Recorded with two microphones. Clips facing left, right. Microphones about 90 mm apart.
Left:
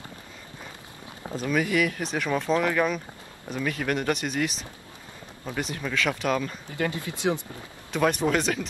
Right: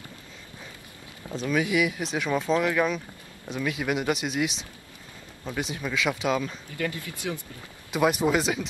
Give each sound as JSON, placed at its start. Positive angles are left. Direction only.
{"t": 1.3, "sound": "speech", "side_deg": 0}
{"t": 5.6, "sound": "speech", "side_deg": -5}
{"t": 6.8, "sound": "speech", "side_deg": 25}
{"t": 7.9, "sound": "speech", "side_deg": -10}